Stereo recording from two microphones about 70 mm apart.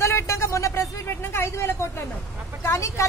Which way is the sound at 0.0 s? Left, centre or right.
Left.